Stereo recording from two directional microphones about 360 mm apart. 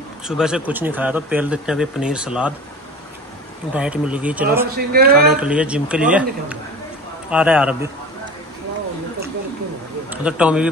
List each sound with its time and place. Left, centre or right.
0.3 s speech: centre
3.7 s speech: centre
4.7 s speech: right
5.3 s speech: centre
10.0 s a man's voice: centre